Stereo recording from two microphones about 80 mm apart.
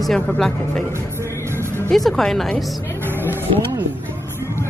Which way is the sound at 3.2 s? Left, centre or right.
Right.